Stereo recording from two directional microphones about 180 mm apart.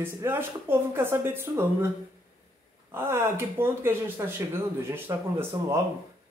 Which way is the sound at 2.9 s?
15° right (ahead or behind).